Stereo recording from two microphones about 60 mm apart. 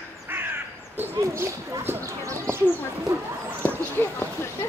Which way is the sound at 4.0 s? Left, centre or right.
Left.